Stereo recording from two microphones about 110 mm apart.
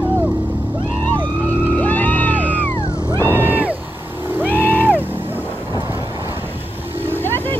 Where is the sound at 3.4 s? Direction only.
15° right (ahead or behind).